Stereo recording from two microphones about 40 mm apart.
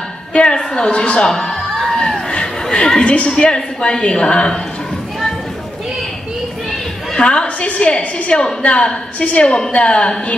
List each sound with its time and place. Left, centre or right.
0.3 s a woman's voice: left
0.6 s a man's voice: centre
2.2 s a sound: centre
3.0 s a woman's voice: left
7.2 s a woman's voice: left